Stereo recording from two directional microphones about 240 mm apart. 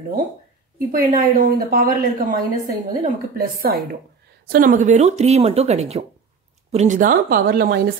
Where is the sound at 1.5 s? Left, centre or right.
Right.